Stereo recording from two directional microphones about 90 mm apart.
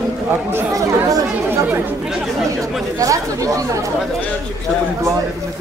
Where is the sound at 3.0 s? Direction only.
40° right (ahead or behind).